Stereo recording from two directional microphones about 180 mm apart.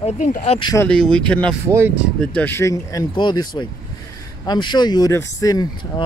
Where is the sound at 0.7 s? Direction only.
5° left (ahead or behind).